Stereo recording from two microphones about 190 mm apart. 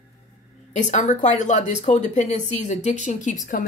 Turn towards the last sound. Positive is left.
turn(degrees=45)  # may be behind; listen again after turning